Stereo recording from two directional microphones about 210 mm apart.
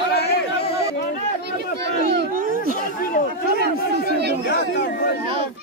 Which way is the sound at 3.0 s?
45° left (ahead or behind).